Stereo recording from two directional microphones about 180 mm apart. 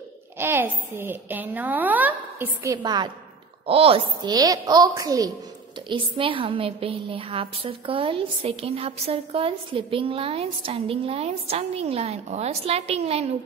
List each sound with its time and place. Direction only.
0.4 s a child's voice: 15° right (ahead or behind); by 13.3 s 35° right (ahead or behind)